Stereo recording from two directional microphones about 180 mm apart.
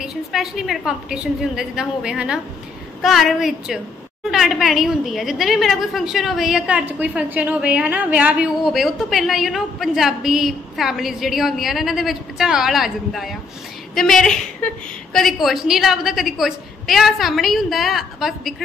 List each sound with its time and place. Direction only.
0.0 s a woman's voice: centre (ahead or behind)